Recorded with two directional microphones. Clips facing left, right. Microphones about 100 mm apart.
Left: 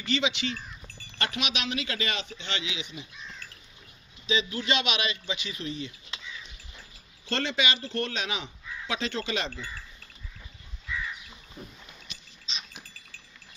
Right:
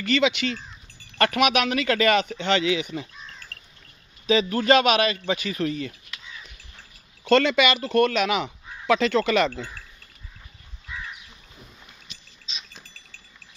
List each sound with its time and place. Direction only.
0.0 s speech: 60° right (ahead or behind)
4.3 s a man's voice: 50° right (ahead or behind)
7.2 s speech: 70° right (ahead or behind); by 9.7 s 55° right (ahead or behind)